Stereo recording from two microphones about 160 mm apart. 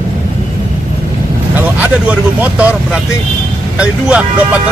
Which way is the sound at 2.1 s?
10° right (ahead or behind).